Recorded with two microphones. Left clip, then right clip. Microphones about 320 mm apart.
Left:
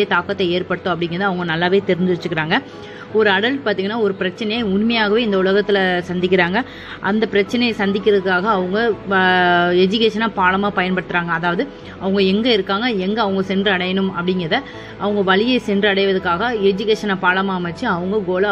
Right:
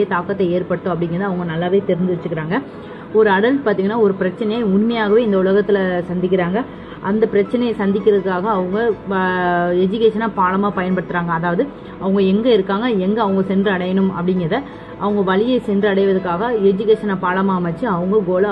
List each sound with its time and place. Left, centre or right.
0.0 s a woman's voice: centre
3.2 s a woman's voice: centre